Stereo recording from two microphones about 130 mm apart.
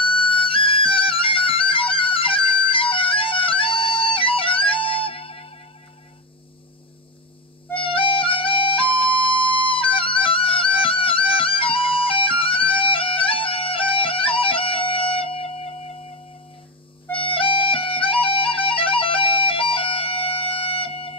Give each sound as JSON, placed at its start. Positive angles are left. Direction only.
{"t": 0.1, "sound": "music", "side_deg": 40}
{"t": 7.7, "sound": "music", "side_deg": 45}
{"t": 17.1, "sound": "music", "side_deg": 45}